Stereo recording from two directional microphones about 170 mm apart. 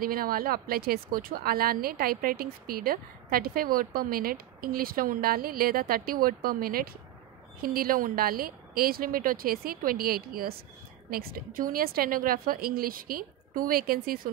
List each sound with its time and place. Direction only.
0.0 s speech: 60° right (ahead or behind)